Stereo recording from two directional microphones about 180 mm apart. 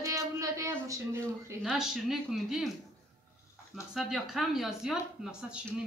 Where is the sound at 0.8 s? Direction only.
15° right (ahead or behind).